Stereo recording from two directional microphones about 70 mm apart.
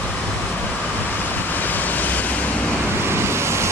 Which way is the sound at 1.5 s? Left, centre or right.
Left.